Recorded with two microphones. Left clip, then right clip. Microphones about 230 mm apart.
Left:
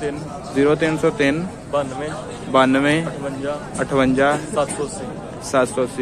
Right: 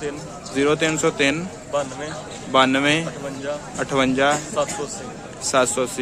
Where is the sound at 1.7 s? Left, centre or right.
Centre.